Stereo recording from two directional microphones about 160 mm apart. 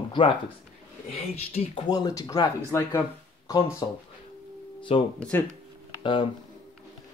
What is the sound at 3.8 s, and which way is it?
Speech, 25° left (ahead or behind).